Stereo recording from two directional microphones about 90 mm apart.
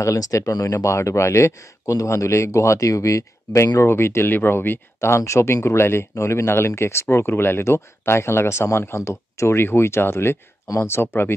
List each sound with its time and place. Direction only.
0.0 s speech: 35° left (ahead or behind)